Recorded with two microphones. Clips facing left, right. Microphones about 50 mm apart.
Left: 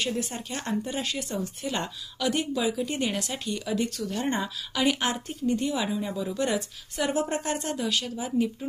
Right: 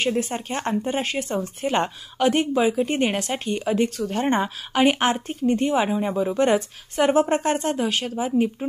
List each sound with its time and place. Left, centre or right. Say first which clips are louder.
0.0 s speech: right 7 dB; right